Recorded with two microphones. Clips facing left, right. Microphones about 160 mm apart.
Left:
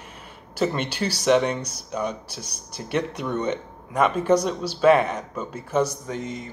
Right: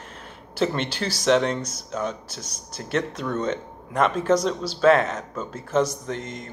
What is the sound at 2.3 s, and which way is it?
Speech, 60° left (ahead or behind).